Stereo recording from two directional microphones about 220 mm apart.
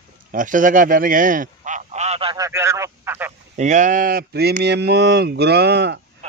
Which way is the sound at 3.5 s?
35° right (ahead or behind).